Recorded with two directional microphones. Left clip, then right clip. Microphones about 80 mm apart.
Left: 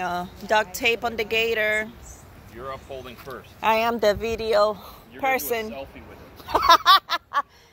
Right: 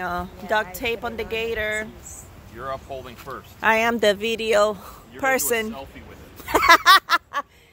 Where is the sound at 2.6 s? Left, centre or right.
Right.